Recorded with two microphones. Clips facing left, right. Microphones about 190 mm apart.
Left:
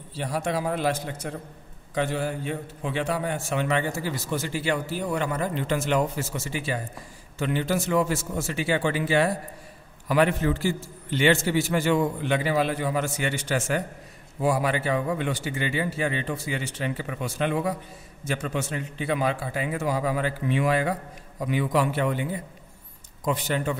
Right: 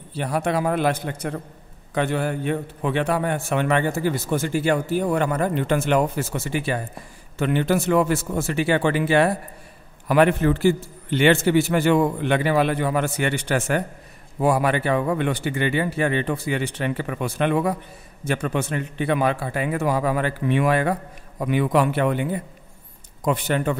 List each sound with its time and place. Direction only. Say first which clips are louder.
0.1 s a man's voice: right 4 dB; 60° right (ahead or behind)